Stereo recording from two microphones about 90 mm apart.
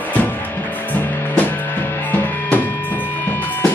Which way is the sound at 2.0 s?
20° left (ahead or behind).